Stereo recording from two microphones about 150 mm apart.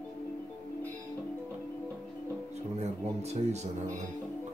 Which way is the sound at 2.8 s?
45° right (ahead or behind).